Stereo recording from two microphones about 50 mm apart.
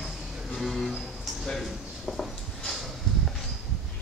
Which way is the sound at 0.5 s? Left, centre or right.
Centre.